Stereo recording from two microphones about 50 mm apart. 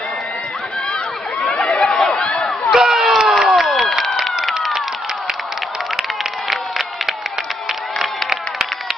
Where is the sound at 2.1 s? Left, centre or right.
Centre.